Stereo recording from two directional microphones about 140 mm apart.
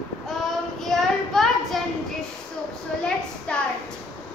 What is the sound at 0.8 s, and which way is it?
A child's voice, centre (ahead or behind).